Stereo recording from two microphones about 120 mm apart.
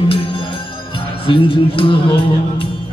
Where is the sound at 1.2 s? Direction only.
50° left (ahead or behind).